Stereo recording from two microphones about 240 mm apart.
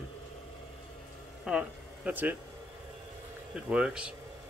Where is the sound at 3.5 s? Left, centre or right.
Centre.